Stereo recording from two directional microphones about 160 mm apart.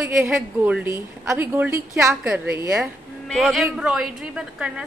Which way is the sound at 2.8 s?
Centre (ahead or behind).